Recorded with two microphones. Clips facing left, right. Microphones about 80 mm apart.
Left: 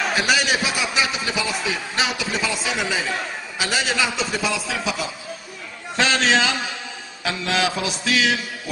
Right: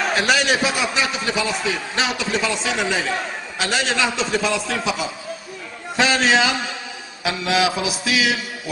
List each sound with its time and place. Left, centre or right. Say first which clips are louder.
0.0 s a man's voice: right 2 dB; centre
5.9 s mantra: right 2 dB; centre